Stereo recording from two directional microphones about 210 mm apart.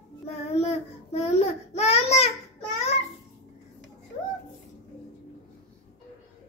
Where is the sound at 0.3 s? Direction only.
30° left (ahead or behind).